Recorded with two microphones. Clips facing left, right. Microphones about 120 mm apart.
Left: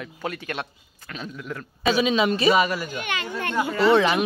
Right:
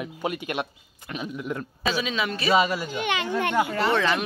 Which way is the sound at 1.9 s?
20° left (ahead or behind).